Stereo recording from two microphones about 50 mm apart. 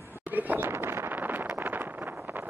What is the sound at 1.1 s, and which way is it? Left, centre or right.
Vehicle, right.